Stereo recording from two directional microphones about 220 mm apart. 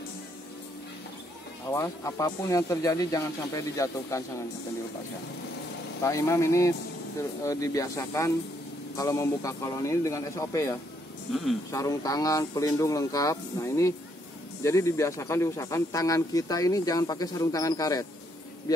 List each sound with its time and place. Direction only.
1.7 s speech: 10° left (ahead or behind)
6.0 s speech: 15° left (ahead or behind)